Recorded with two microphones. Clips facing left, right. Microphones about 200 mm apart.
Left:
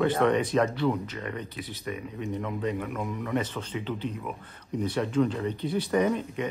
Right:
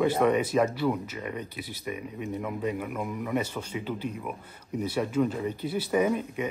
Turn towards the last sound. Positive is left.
turn(degrees=-5)  # may be behind; listen again after turning